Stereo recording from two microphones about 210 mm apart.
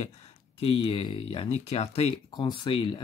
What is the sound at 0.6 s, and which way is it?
Speech, 25° left (ahead or behind).